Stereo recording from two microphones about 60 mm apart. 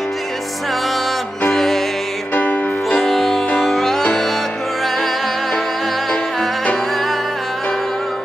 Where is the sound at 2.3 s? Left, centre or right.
Left.